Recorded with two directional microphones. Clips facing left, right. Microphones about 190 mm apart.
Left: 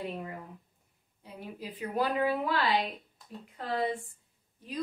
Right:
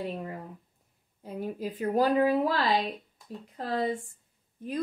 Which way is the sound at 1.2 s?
45° right (ahead or behind).